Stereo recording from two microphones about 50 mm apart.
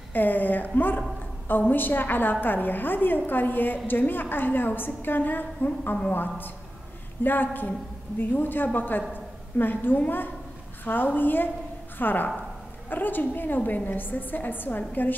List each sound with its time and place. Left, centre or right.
0.1 s a woman's voice: left